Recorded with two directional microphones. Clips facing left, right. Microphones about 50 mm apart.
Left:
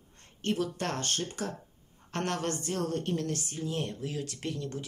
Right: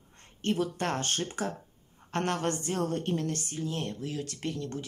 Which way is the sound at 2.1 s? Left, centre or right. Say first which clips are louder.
Right 2 dB; centre.